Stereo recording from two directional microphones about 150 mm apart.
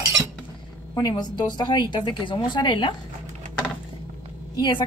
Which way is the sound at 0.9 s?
25° left (ahead or behind).